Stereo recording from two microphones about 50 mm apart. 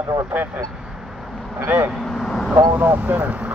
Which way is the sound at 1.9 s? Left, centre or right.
Centre.